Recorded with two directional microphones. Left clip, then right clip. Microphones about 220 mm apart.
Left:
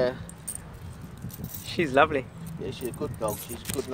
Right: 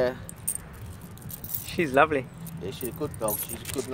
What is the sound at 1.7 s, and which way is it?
Speech, centre (ahead or behind).